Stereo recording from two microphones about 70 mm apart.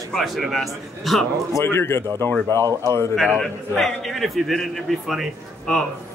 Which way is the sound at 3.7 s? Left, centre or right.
Centre.